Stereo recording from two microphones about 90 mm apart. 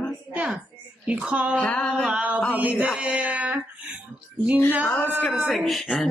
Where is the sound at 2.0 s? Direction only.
15° right (ahead or behind).